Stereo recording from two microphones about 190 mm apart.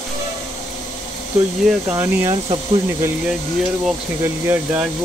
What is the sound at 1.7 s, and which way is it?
Speech, 10° right (ahead or behind).